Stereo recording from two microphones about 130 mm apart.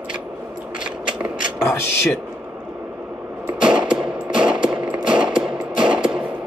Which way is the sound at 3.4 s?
5° right (ahead or behind).